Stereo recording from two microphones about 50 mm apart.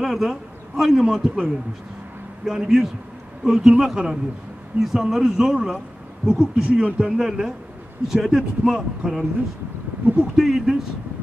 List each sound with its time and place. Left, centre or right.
0.0 s a man's voice: centre
10.0 s speech: right
10.3 s a man's voice: centre